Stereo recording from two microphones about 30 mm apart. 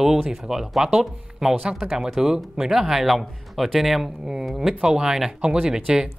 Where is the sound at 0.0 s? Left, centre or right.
Centre.